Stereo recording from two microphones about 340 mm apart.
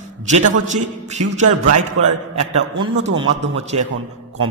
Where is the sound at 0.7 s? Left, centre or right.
Right.